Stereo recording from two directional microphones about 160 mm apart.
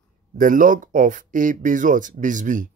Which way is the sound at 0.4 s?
55° right (ahead or behind).